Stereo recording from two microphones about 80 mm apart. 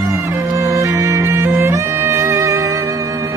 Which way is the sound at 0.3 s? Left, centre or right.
Right.